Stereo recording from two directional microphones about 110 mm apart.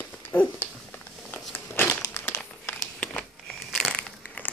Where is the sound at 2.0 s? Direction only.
25° left (ahead or behind).